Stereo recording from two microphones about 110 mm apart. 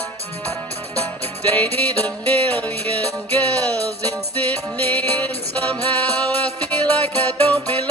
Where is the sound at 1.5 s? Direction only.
15° left (ahead or behind).